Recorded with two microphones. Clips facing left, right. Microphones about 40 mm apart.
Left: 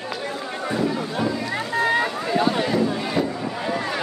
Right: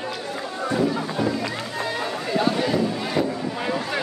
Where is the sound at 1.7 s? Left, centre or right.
Left.